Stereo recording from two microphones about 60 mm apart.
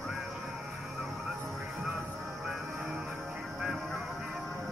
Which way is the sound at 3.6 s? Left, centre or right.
Centre.